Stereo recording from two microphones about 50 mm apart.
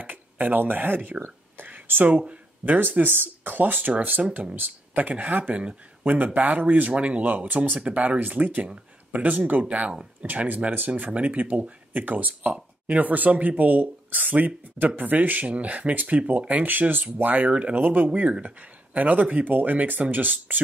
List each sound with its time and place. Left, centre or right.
0.0 s speech: right
2.0 s speech: right